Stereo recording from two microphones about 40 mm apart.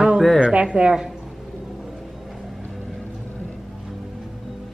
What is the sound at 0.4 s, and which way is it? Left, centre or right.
Speech, right.